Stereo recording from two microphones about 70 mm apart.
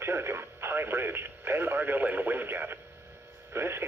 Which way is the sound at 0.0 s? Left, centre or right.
Right.